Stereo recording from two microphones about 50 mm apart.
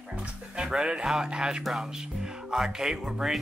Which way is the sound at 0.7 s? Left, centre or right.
Centre.